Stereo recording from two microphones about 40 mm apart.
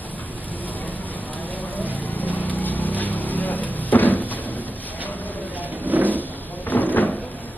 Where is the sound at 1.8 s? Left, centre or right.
Left.